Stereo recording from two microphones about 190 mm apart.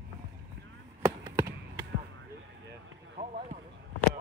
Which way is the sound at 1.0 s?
15° right (ahead or behind).